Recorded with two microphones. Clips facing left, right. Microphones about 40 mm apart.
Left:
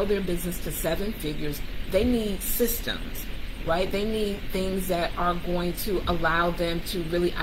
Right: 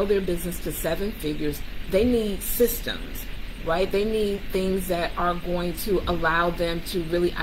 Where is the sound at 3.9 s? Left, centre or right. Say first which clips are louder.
Right 4 dB; centre.